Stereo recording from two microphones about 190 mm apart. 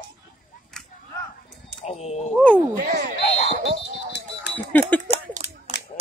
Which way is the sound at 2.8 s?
50° right (ahead or behind).